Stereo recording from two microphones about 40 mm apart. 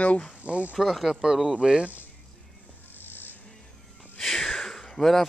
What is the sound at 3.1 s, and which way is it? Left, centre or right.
Music, left.